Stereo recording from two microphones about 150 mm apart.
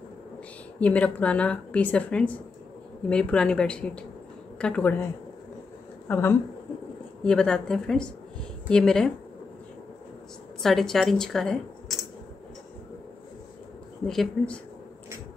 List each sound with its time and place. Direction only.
0.7 s a woman's voice: 10° left (ahead or behind)
6.0 s a woman's voice: 15° left (ahead or behind)
10.6 s speech: centre (ahead or behind)
14.0 s a woman's voice: 5° left (ahead or behind)